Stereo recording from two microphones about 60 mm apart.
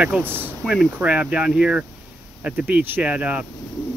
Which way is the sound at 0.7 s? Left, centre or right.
Centre.